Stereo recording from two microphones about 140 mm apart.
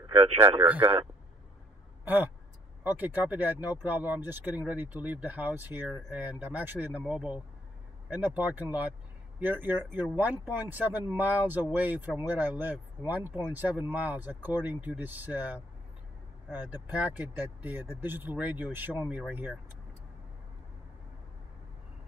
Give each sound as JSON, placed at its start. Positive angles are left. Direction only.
{"t": 0.0, "sound": "speech", "side_deg": -35}
{"t": 0.7, "sound": "speech", "side_deg": -10}
{"t": 2.8, "sound": "speech", "side_deg": -15}
{"t": 16.9, "sound": "speech", "side_deg": -10}